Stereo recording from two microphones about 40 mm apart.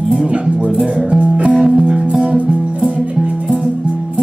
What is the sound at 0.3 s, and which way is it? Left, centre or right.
Music, right.